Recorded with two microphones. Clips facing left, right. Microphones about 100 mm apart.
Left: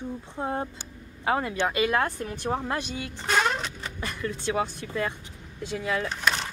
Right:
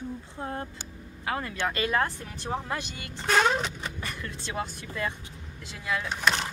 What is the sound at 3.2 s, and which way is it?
Speech, centre (ahead or behind).